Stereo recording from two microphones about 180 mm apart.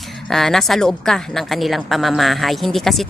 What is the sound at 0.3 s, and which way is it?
Speech, centre (ahead or behind).